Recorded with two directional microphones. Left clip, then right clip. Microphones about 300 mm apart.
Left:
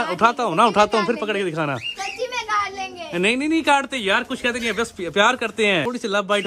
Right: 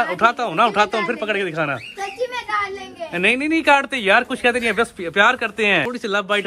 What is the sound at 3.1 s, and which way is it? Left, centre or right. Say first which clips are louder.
A man's voice: right 2 dB; centre.